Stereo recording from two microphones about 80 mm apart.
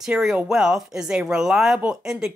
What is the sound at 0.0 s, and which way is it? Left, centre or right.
Speech, centre.